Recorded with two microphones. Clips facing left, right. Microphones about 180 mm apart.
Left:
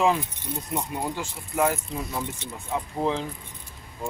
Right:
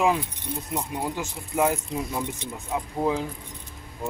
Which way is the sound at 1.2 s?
15° right (ahead or behind).